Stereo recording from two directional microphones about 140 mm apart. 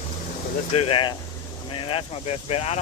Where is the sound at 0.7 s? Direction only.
40° left (ahead or behind).